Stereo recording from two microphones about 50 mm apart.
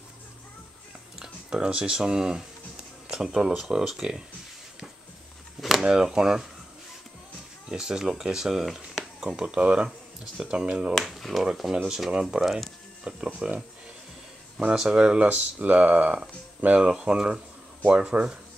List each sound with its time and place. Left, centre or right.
1.2 s speech: centre
5.6 s a sound: centre
5.9 s speech: centre
7.7 s speech: centre
9.4 s speech: centre
11.0 s speech: centre
12.4 s speech: centre
13.0 s speech: centre
14.7 s speech: centre